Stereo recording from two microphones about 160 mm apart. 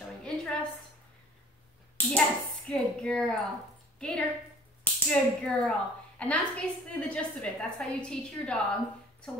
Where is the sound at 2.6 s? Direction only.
5° left (ahead or behind).